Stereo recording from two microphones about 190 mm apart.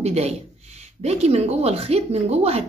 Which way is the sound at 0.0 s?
35° right (ahead or behind).